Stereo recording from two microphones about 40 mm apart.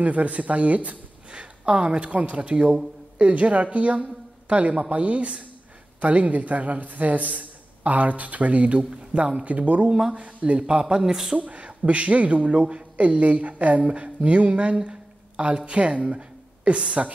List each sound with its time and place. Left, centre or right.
0.0 s a man's voice: right
1.3 s a man's voice: right
9.8 s a man's voice: centre
10.1 s a man's voice: right
10.8 s a man's voice: centre
11.3 s a man's voice: right